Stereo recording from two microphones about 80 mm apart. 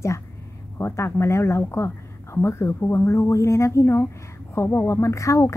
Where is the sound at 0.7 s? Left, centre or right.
Left.